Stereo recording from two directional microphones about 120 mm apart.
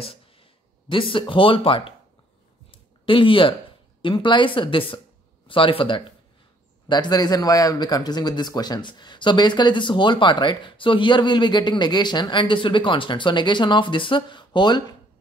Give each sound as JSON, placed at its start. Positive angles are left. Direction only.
{"t": 0.0, "sound": "speech", "side_deg": 50}
{"t": 2.7, "sound": "a sound", "side_deg": 45}
{"t": 4.0, "sound": "a woman's voice", "side_deg": 40}